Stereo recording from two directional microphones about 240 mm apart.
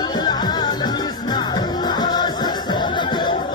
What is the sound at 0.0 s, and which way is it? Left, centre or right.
Music, centre.